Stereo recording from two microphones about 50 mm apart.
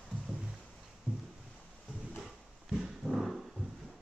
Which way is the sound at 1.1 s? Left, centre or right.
Right.